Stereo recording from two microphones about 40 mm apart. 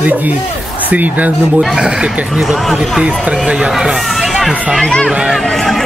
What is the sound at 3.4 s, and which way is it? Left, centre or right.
Speech, right.